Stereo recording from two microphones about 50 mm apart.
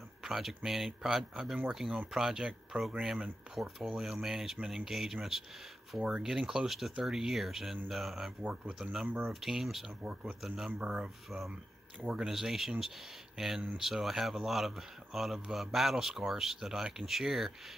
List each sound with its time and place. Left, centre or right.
0.2 s speech: centre
8.4 s speech: right
9.3 s speech: centre
10.8 s speech: centre
11.2 s speech: centre